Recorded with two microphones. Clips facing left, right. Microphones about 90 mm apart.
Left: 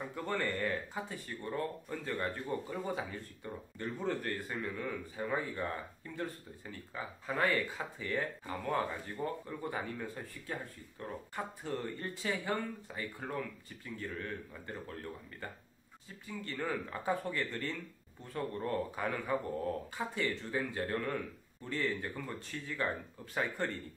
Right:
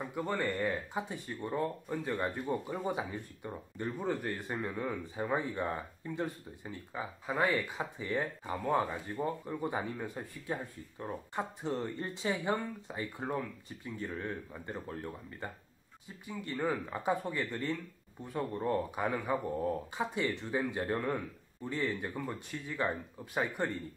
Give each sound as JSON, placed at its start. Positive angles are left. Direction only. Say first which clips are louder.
{"t": 0.0, "sound": "speech", "louder": "right 2 dB", "side_deg": -5}
{"t": 0.9, "sound": "speech", "louder": "right 3 dB", "side_deg": -20}